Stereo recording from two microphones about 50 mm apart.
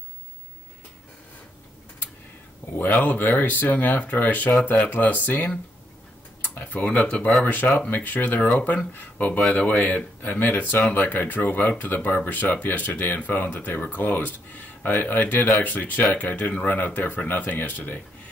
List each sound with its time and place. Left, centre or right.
2.7 s speech: left
6.5 s tick-tock: left
7.4 s speech: left
10.2 s speech: left